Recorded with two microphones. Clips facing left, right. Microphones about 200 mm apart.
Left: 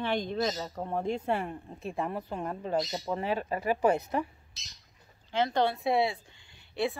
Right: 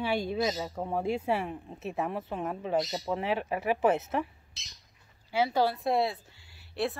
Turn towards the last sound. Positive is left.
turn(degrees=0)  # may be behind; listen again after turning